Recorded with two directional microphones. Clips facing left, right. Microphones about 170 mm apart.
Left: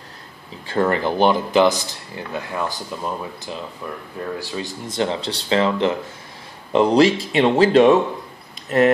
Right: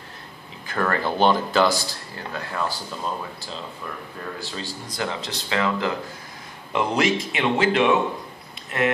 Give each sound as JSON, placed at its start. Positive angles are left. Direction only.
{"t": 0.7, "sound": "a man's voice", "side_deg": 20}